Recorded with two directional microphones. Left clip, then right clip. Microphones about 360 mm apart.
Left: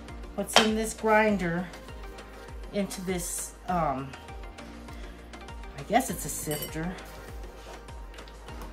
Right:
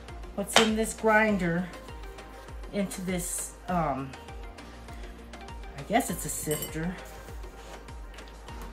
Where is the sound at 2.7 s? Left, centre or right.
Centre.